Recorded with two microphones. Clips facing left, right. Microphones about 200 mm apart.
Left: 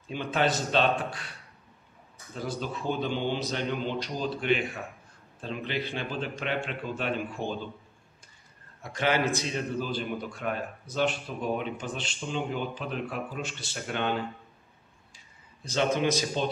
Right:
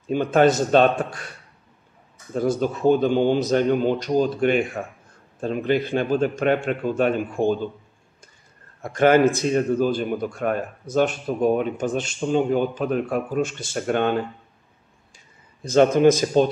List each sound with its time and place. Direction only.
0.1 s a man's voice: 45° right (ahead or behind)
2.3 s a man's voice: 45° right (ahead or behind)
8.8 s a man's voice: 50° right (ahead or behind)
15.6 s a man's voice: 50° right (ahead or behind)